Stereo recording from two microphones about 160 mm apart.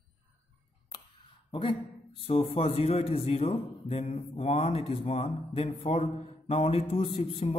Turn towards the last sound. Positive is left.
turn(degrees=35)  # may be behind; listen again after turning